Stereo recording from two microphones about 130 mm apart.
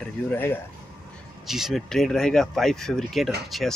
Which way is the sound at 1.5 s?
Centre (ahead or behind).